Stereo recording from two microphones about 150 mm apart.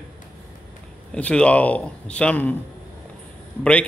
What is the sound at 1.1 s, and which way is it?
Speech, 10° left (ahead or behind).